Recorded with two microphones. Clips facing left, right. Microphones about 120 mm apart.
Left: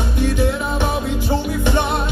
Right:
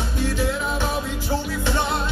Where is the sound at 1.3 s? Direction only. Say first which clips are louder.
Left 4 dB; 20° left (ahead or behind).